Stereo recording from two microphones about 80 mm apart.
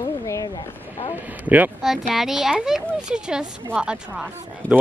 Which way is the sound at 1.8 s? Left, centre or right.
Centre.